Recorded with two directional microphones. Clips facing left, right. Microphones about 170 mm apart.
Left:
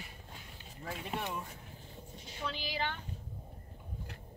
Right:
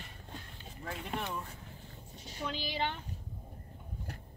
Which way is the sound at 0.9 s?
10° left (ahead or behind).